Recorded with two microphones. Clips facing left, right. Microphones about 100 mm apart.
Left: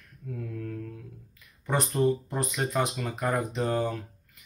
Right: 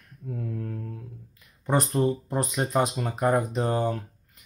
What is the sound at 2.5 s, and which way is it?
Speech, 25° right (ahead or behind).